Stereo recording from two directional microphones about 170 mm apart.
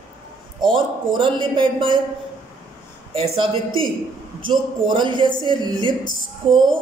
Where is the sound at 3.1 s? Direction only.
30° right (ahead or behind).